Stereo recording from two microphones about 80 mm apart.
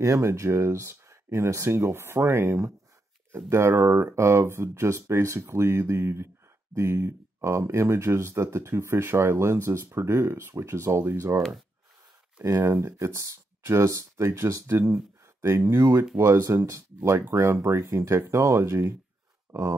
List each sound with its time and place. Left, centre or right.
0.0 s speech: right
12.5 s speech: right
16.5 s speech: right
19.5 s a sound: right